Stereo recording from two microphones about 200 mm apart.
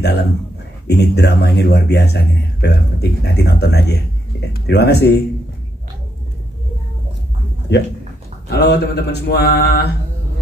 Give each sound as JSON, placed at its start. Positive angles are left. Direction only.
{"t": 0.8, "sound": "speech", "side_deg": 55}
{"t": 7.7, "sound": "speech", "side_deg": 60}